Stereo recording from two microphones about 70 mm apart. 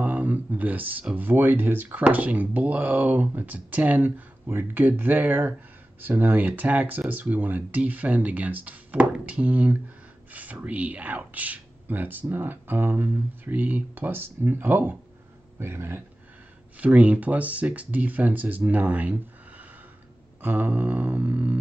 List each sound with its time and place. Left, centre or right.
0.0 s a sound: right
1.1 s speech: right
16.8 s speech: centre
20.4 s speech: right